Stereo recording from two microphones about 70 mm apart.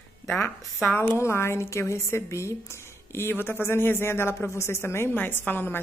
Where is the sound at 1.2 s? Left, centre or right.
Left.